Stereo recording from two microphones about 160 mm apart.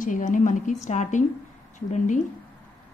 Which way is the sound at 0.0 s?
55° left (ahead or behind).